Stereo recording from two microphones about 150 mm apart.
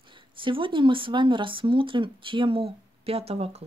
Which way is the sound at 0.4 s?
35° right (ahead or behind).